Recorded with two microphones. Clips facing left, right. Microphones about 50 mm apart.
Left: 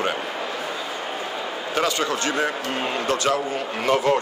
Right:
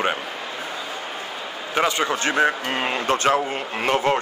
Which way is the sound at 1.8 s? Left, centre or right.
Right.